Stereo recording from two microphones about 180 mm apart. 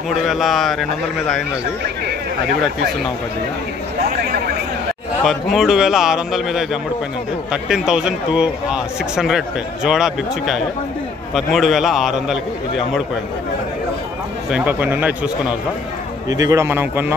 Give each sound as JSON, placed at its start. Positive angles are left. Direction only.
{"t": 0.1, "sound": "a man's voice", "side_deg": 0}
{"t": 5.2, "sound": "a man's voice", "side_deg": 0}
{"t": 14.5, "sound": "speech", "side_deg": -10}
{"t": 16.3, "sound": "speech", "side_deg": -20}